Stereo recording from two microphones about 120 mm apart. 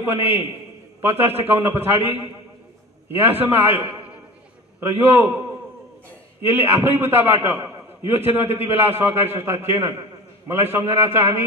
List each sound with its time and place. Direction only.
0.0 s a man's voice: 20° right (ahead or behind)